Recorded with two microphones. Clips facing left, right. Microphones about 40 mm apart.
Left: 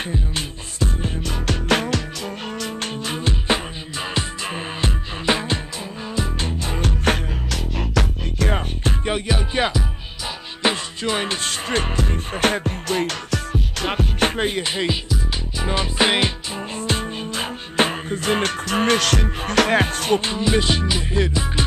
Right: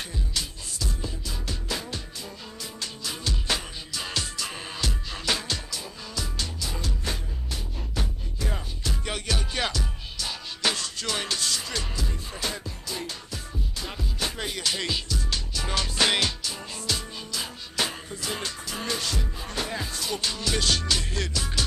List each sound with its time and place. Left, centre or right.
0.1 s music: left
1.5 s music: left
2.6 s music: left
3.3 s music: left
7.1 s music: left
9.0 s music: left
16.8 s music: left
20.2 s music: left